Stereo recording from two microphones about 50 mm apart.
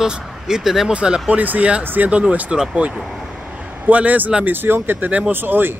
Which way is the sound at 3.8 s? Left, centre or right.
Right.